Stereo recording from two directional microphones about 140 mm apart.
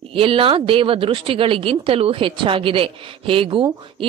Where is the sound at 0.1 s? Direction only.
40° right (ahead or behind).